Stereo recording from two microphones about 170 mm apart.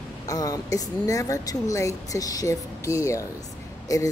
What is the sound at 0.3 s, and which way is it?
A woman's voice, 20° left (ahead or behind).